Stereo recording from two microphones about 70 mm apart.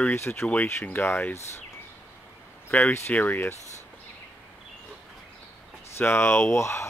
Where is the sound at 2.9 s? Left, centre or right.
Left.